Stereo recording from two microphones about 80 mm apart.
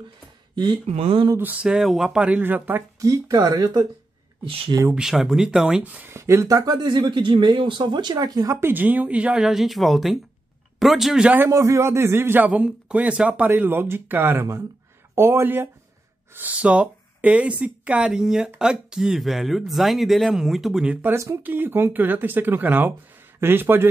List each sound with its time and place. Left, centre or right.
0.6 s speech: right
1.4 s speech: centre
2.4 s speech: right
3.0 s speech: right
4.9 s speech: centre
5.9 s speech: right
6.1 s speech: right
8.5 s speech: right; by 11.2 s centre
11.4 s a man's voice: right
12.4 s speech: centre
20.8 s speech: centre
21.1 s speech: right